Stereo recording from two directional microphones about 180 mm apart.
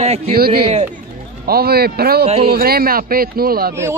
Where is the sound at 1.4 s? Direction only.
60° right (ahead or behind).